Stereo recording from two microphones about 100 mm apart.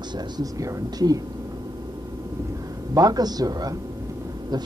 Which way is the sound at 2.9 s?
40° right (ahead or behind).